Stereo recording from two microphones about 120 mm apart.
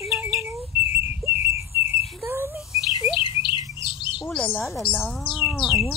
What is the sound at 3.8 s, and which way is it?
Chirp, 40° left (ahead or behind).